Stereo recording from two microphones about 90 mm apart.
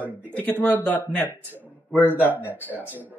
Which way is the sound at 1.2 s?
20° right (ahead or behind).